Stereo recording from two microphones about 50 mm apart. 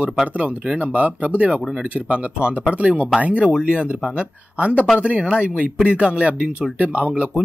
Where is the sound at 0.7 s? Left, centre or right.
Right.